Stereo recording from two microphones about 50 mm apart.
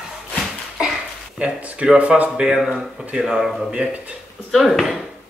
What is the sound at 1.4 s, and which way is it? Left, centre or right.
Speech, right.